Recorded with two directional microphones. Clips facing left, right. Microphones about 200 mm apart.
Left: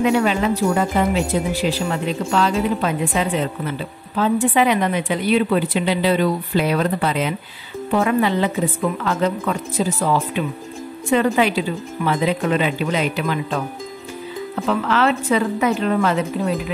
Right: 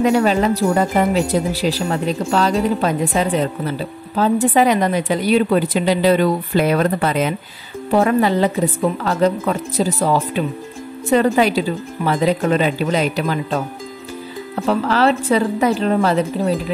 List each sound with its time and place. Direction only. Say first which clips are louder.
0.0 s a woman's voice: right 3 dB; 40° right (ahead or behind)